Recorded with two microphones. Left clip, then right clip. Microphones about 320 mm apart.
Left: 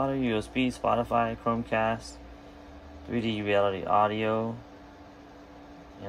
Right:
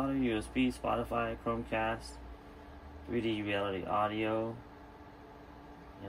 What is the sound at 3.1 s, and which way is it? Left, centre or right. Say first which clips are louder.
Speech: left 8 dB; left.